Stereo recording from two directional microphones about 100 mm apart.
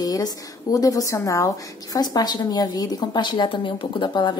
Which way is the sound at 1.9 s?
45° left (ahead or behind).